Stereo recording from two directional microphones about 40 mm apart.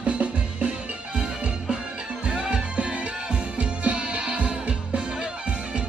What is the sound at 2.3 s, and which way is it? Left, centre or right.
Music, right.